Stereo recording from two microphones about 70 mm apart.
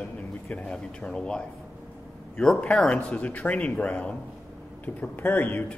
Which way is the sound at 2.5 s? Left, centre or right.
Centre.